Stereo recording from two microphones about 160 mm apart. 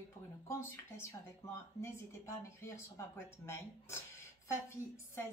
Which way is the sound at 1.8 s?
15° left (ahead or behind).